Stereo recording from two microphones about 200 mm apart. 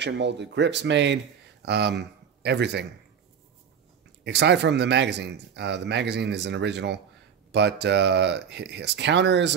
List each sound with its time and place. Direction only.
0.0 s speech: 60° right (ahead or behind)
4.2 s speech: 60° right (ahead or behind)